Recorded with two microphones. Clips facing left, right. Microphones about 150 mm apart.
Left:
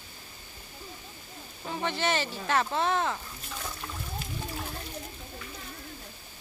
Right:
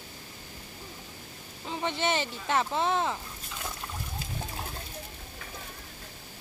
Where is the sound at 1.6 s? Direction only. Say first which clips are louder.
Even; 20° right (ahead or behind).